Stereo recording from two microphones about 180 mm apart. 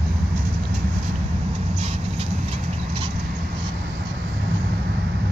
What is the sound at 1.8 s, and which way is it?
Vehicle, 35° right (ahead or behind).